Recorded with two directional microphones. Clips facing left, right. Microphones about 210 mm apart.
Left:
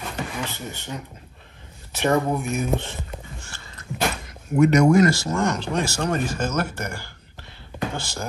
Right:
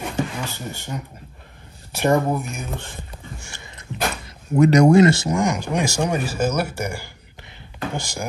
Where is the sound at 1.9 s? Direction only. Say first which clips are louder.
Right 2 dB; 10° right (ahead or behind).